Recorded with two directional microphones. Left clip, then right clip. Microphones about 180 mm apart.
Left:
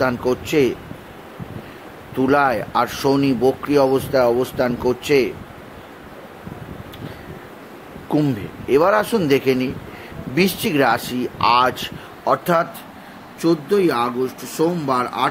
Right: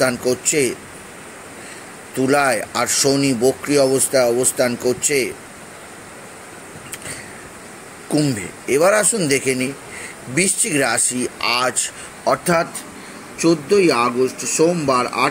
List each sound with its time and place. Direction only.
0.0 s speech: 5° left (ahead or behind)
2.1 s speech: 5° left (ahead or behind)
8.1 s speech: 5° left (ahead or behind)
13.4 s speech: 15° right (ahead or behind)